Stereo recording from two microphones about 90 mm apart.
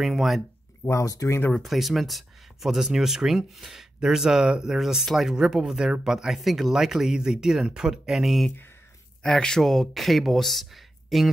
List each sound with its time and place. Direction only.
0.0 s speech: centre (ahead or behind)
0.8 s speech: 35° left (ahead or behind)
1.5 s speech: centre (ahead or behind)
9.2 s speech: 10° left (ahead or behind)